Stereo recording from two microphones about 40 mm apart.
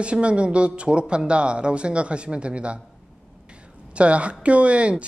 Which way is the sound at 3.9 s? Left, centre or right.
Right.